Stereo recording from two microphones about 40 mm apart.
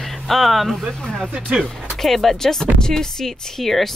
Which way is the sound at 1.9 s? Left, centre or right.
Centre.